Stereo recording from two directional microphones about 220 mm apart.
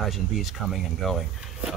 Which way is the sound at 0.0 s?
Centre (ahead or behind).